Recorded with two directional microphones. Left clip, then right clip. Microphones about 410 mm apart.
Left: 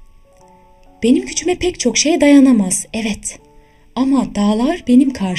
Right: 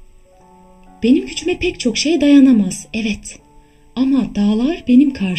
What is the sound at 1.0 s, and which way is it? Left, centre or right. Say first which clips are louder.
Speech: even; centre.